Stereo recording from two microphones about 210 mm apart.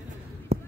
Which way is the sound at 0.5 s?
30° right (ahead or behind).